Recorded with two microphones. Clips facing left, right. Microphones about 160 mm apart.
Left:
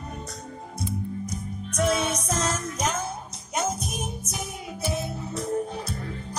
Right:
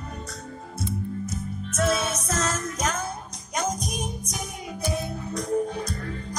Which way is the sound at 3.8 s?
15° right (ahead or behind).